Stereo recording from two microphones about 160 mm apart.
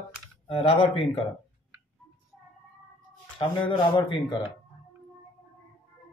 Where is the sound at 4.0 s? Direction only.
30° left (ahead or behind).